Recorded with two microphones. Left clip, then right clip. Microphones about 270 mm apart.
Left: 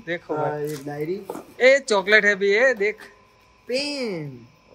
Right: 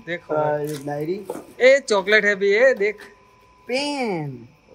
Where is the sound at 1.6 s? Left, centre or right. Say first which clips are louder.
Right 1 dB; centre.